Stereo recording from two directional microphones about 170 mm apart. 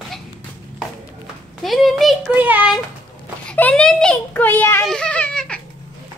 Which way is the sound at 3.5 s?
5° left (ahead or behind).